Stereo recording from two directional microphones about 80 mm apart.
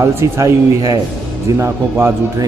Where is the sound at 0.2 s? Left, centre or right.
Right.